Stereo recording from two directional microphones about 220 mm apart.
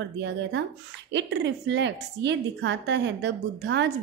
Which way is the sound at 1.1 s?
55° right (ahead or behind).